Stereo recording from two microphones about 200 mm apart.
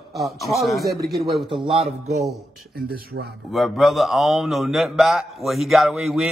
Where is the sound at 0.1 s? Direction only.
Centre (ahead or behind).